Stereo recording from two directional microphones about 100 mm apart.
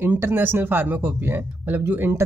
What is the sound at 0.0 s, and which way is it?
Speech, 20° right (ahead or behind).